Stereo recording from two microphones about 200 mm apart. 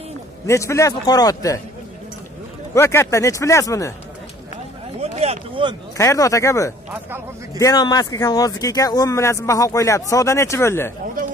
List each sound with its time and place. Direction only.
0.5 s speech: 15° left (ahead or behind)
2.7 s speech: 15° left (ahead or behind)
5.0 s speech: 30° right (ahead or behind)
5.9 s speech: 15° left (ahead or behind)